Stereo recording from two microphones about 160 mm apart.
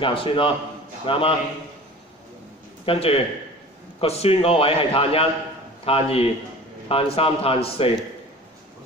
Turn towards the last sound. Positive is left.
turn(degrees=35)  # may be behind; listen again after turning